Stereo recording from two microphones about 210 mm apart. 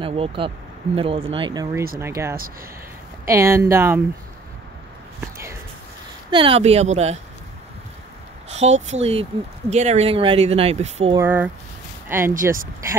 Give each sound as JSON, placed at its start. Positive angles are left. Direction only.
{"t": 0.0, "sound": "speech", "side_deg": -25}
{"t": 5.2, "sound": "whispering", "side_deg": -15}
{"t": 6.3, "sound": "speech", "side_deg": -25}
{"t": 8.5, "sound": "speech", "side_deg": -30}
{"t": 11.1, "sound": "speech", "side_deg": -10}